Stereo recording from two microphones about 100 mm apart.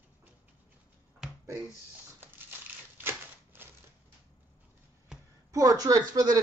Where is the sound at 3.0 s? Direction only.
20° right (ahead or behind).